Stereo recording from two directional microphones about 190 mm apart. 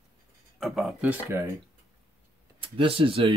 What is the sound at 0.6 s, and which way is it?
Speech, centre (ahead or behind).